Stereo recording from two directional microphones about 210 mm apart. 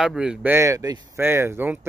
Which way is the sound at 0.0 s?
5° right (ahead or behind).